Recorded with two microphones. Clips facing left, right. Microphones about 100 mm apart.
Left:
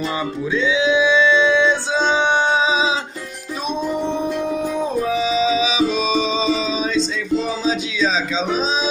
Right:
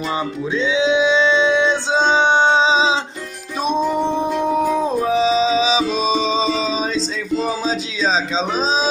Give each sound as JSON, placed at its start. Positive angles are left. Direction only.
{"t": 0.6, "sound": "singing", "side_deg": -20}
{"t": 3.6, "sound": "music", "side_deg": -35}